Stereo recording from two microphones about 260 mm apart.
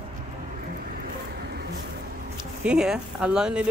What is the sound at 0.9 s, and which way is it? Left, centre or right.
Vehicle, right.